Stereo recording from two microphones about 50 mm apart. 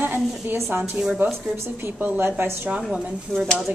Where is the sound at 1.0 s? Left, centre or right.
Right.